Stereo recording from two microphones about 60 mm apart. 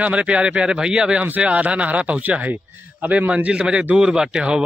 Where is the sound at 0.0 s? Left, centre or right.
Right.